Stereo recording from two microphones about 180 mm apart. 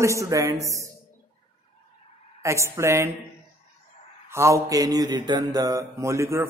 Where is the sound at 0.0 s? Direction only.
15° right (ahead or behind).